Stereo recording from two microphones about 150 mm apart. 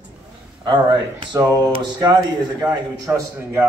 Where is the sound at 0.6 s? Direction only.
35° right (ahead or behind).